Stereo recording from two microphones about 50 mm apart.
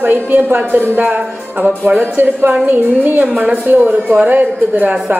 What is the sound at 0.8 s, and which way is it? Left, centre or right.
Speech, right.